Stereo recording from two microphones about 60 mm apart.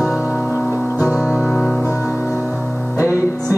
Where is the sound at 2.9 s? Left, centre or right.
Left.